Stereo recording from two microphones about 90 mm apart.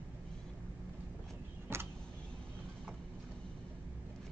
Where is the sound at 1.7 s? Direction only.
25° right (ahead or behind).